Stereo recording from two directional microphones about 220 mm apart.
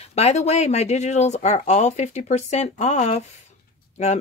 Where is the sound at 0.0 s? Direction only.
30° left (ahead or behind).